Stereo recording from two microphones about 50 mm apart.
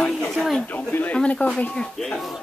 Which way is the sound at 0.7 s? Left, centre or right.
Left.